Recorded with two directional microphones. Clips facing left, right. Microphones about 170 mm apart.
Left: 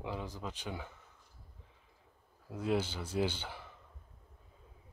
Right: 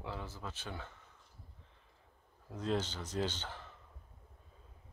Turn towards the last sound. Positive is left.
turn(degrees=10)  # may be behind; listen again after turning